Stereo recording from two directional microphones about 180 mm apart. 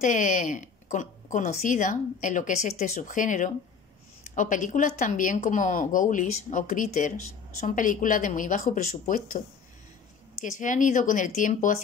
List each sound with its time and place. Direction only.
0.0 s speech: 45° left (ahead or behind)
10.4 s speech: 45° left (ahead or behind)